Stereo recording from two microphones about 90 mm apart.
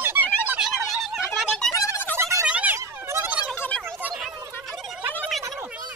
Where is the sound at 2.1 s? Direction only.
35° right (ahead or behind).